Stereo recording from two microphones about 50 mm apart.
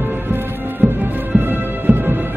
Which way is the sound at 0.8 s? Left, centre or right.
Right.